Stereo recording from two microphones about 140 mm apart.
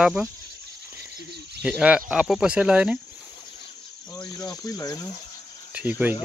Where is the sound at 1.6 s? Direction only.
5° right (ahead or behind).